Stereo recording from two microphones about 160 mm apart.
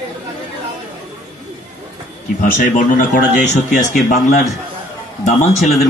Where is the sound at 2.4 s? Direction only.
55° left (ahead or behind).